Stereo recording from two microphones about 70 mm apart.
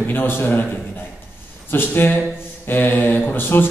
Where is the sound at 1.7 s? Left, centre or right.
Left.